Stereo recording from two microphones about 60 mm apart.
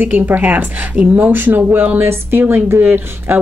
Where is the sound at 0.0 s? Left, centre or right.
Right.